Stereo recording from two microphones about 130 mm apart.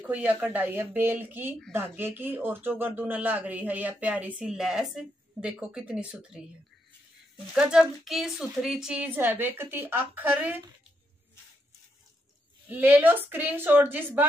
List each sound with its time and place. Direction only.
0.0 s speech: 10° right (ahead or behind)
7.5 s speech: 5° right (ahead or behind)
12.6 s speech: 15° right (ahead or behind)